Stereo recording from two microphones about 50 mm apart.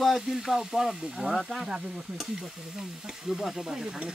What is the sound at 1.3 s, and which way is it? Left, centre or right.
Stir, centre.